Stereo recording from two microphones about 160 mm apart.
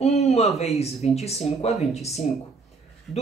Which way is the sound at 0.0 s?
45° left (ahead or behind).